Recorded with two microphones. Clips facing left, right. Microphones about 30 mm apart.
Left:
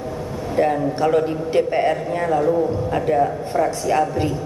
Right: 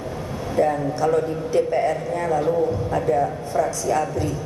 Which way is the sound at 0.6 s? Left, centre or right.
Left.